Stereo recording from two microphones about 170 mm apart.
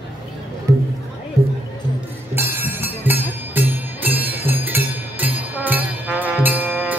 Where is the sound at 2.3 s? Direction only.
10° right (ahead or behind).